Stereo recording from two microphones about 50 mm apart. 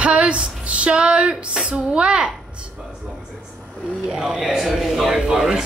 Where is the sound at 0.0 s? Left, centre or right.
Right.